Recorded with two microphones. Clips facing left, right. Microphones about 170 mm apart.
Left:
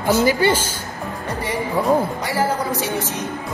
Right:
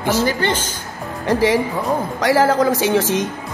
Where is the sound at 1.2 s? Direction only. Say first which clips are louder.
Right 10 dB; 90° right.